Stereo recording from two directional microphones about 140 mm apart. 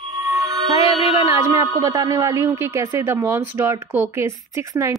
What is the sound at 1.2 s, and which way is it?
A man's voice, 25° right (ahead or behind).